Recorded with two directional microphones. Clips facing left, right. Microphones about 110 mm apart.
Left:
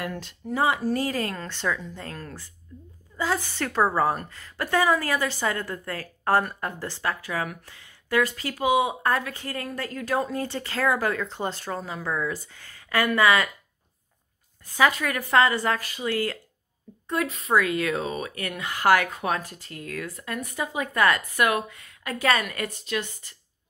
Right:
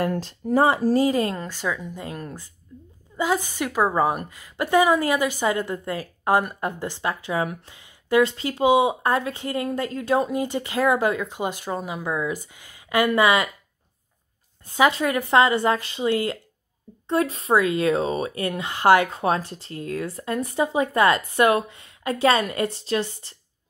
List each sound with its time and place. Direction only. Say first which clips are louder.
0.0 s speech: right 8 dB; 35° right (ahead or behind)
0.9 s speech: right 7 dB; 20° right (ahead or behind)
1.5 s a woman's voice: right 1 dB; 5° right (ahead or behind)
14.7 s speech: right 3 dB; 25° right (ahead or behind)